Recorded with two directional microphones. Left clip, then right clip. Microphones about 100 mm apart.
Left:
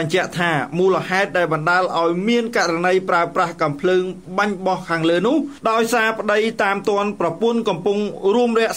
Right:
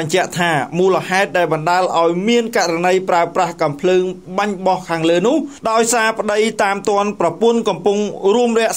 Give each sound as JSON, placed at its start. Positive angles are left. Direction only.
{"t": 0.1, "sound": "a man's voice", "side_deg": -35}